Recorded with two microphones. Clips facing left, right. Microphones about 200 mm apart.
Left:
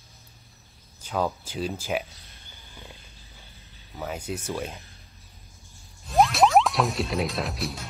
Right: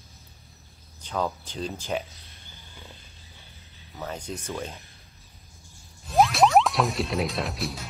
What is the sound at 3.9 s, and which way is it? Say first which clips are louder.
Speech: left 2 dB; 5° left (ahead or behind).